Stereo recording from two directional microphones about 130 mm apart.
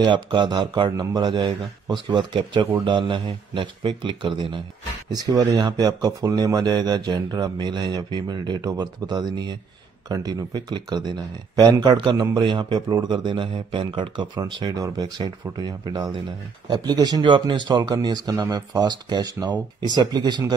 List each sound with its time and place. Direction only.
0.0 s a man's voice: 35° right (ahead or behind)